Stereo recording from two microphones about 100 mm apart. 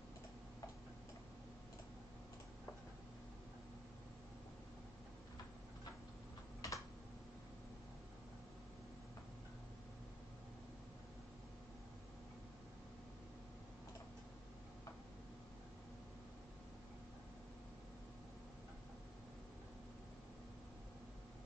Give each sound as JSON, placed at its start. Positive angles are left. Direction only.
{"t": 6.6, "sound": "typing", "side_deg": 35}